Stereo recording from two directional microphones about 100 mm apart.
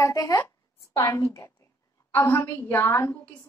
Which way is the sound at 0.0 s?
35° left (ahead or behind).